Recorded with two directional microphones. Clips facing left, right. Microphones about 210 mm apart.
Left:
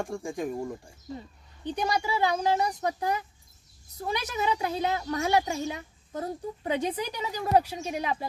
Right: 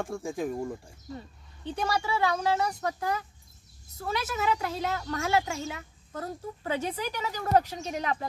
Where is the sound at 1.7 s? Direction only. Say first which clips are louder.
Left 1 dB; 15° left (ahead or behind).